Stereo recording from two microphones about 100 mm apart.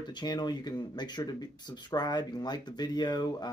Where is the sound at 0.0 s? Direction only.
45° left (ahead or behind).